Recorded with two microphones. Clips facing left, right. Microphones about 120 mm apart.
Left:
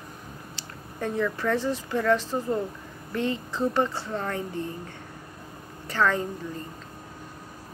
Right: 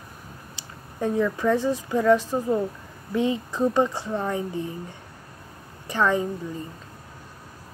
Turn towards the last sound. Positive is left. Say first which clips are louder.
# right 2 dB
turn(degrees=-15)  # may be behind; listen again after turning